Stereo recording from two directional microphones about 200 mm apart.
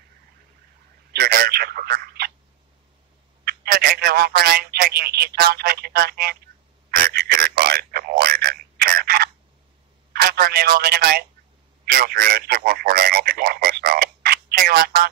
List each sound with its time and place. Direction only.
1.1 s telephone: 45° right (ahead or behind)
3.4 s a man's voice: 45° right (ahead or behind)
7.0 s a sound: 45° right (ahead or behind)
10.2 s a man's voice: 50° right (ahead or behind)